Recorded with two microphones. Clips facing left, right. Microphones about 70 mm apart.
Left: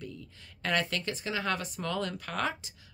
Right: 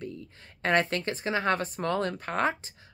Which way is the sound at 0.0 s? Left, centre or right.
Right.